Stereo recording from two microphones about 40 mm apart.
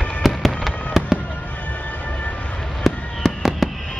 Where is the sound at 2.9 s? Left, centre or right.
Centre.